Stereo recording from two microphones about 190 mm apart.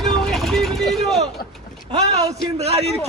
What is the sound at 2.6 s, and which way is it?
Speech, 35° right (ahead or behind).